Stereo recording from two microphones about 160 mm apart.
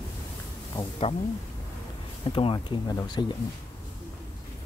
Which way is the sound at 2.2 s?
30° left (ahead or behind).